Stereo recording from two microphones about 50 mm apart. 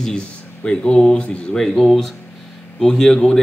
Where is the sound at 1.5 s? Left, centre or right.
Centre.